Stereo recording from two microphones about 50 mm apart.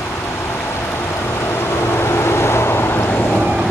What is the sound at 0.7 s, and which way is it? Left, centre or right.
Vehicle, left.